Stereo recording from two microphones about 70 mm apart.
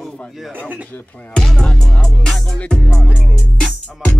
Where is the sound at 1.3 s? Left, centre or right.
Centre.